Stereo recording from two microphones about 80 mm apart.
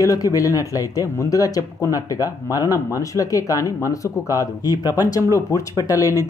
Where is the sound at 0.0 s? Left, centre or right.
Left.